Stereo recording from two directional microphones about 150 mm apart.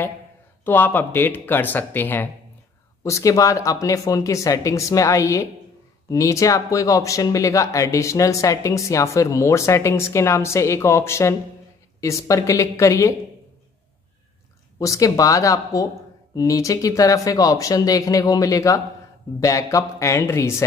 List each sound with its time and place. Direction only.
0.7 s speech: 15° left (ahead or behind)
14.8 s speech: 20° left (ahead or behind)